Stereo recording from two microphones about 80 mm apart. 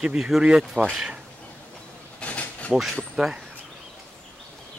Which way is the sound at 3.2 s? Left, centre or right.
Centre.